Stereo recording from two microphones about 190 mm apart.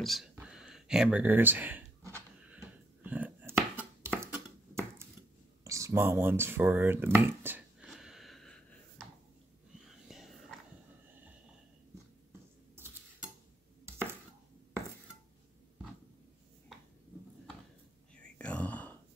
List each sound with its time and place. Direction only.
0.0 s a sound: centre (ahead or behind)
4.2 s finger snapping: 15° right (ahead or behind)
5.6 s a sound: 15° right (ahead or behind); by 9.0 s 5° left (ahead or behind)
9.8 s whispering: centre (ahead or behind)
12.3 s scratch: 10° right (ahead or behind)
18.4 s whispering: 5° left (ahead or behind)